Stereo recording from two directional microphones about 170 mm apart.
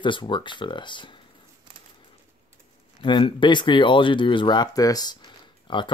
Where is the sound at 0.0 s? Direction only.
30° left (ahead or behind).